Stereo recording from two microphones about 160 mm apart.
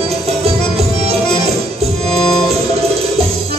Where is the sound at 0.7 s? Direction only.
40° right (ahead or behind).